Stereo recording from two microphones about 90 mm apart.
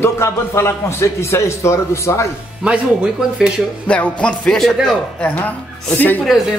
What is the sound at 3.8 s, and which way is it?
Music, 15° left (ahead or behind).